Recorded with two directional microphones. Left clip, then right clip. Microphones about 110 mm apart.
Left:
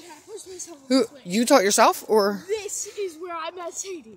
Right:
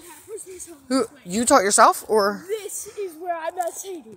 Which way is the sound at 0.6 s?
40° left (ahead or behind).